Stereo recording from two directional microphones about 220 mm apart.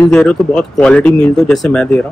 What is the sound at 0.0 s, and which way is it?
A man's voice, 5° left (ahead or behind).